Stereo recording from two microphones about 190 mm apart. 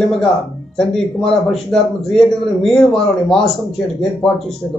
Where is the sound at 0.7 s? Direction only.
Centre (ahead or behind).